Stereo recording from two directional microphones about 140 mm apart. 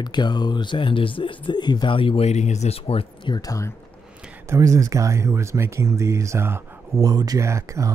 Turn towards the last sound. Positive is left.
turn(degrees=-20)  # may be behind; listen again after turning